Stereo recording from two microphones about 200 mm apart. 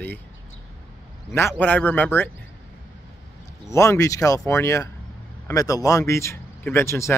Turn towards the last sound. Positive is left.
turn(degrees=15)  # may be behind; listen again after turning